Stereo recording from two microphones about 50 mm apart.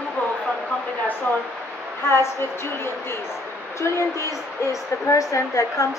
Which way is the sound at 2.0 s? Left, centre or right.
Left.